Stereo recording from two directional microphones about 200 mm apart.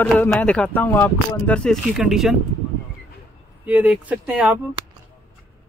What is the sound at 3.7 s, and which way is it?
Speech, 10° right (ahead or behind).